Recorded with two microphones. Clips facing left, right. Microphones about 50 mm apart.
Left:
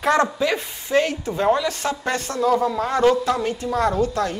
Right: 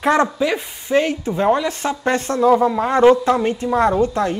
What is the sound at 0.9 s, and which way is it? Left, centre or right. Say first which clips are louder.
A woman's voice: right 3 dB; right.